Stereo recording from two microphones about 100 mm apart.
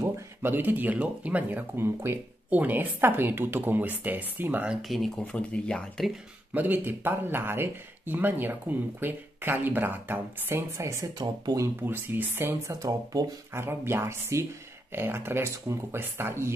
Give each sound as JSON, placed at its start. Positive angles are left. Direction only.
{"t": 0.0, "sound": "speech", "side_deg": -20}
{"t": 4.8, "sound": "speech", "side_deg": 0}
{"t": 5.2, "sound": "speech", "side_deg": 10}
{"t": 6.5, "sound": "speech", "side_deg": -20}
{"t": 11.8, "sound": "speech", "side_deg": -20}
{"t": 12.7, "sound": "speech", "side_deg": -35}